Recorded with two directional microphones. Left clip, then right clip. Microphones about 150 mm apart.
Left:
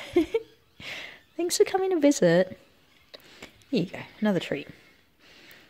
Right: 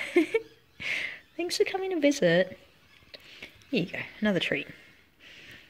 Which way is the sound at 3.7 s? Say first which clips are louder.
Left 1 dB; 20° left (ahead or behind).